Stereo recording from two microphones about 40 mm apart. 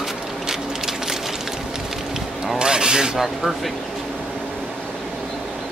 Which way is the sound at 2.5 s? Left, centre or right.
Centre.